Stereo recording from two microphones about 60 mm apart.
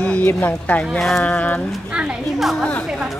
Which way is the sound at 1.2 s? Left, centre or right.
Left.